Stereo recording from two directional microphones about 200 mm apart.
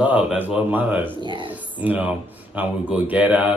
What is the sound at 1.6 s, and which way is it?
Speech, 10° right (ahead or behind).